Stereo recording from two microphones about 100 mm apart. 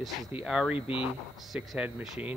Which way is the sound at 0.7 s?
65° left (ahead or behind).